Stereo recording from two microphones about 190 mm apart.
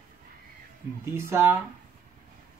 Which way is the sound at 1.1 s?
15° right (ahead or behind).